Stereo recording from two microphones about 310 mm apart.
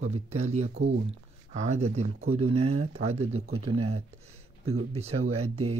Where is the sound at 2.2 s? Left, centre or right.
Right.